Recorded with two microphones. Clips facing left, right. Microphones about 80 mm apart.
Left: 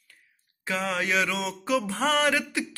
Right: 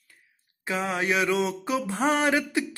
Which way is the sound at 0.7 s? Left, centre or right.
Right.